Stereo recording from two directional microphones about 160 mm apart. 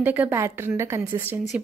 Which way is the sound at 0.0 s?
10° right (ahead or behind).